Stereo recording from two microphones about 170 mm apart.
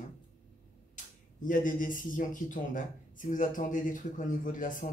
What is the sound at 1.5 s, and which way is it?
Speech, 50° left (ahead or behind).